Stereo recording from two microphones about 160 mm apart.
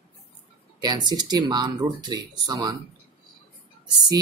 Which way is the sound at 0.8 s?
25° right (ahead or behind).